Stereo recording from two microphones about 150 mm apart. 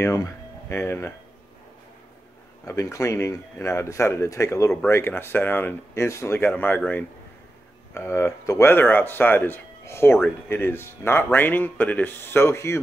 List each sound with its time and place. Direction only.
0.0 s speech: 20° left (ahead or behind)
2.6 s speech: 20° left (ahead or behind)